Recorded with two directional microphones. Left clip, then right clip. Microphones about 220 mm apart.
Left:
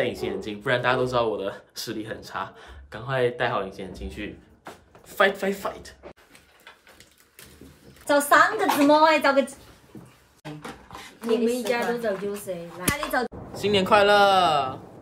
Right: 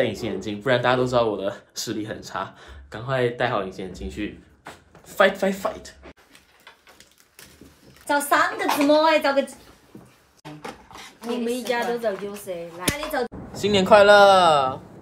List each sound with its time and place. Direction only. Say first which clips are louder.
0.0 s speech: right 2 dB; 5° left (ahead or behind)
8.2 s a woman's voice: left 3 dB; centre (ahead or behind)
10.4 s a sound: right 1 dB; centre (ahead or behind)
12.5 s speech: right 1 dB; 20° right (ahead or behind)
12.8 s a woman's voice: even; centre (ahead or behind)